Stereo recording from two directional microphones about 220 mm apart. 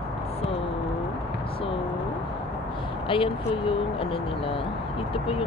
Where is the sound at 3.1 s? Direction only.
25° left (ahead or behind).